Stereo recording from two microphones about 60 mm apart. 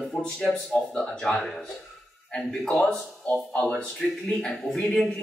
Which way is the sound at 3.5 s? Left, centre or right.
Left.